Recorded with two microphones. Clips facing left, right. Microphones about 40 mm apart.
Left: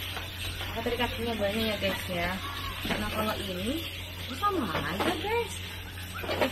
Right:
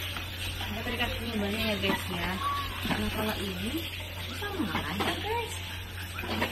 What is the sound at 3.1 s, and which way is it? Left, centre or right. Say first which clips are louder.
Speech: left 1 dB; left.